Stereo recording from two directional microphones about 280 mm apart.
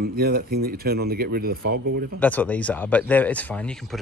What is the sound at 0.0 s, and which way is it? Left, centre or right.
Speech, right.